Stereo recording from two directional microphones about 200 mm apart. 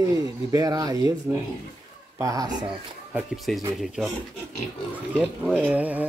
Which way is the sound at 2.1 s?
15° right (ahead or behind).